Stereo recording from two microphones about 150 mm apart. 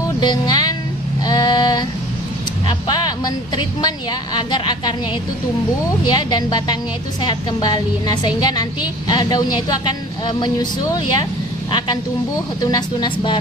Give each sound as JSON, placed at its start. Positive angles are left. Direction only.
{"t": 0.2, "sound": "speech", "side_deg": 30}
{"t": 1.2, "sound": "a sound", "side_deg": 25}
{"t": 2.9, "sound": "a woman's voice", "side_deg": 30}
{"t": 6.0, "sound": "a woman's voice", "side_deg": 30}
{"t": 12.7, "sound": "speech", "side_deg": 30}